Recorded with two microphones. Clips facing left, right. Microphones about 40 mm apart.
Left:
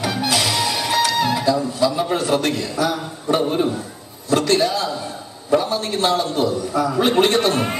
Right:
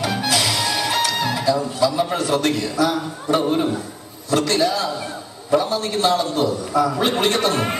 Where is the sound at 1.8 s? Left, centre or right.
Left.